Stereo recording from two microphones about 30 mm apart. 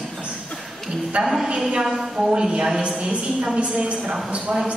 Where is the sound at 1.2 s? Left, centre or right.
Centre.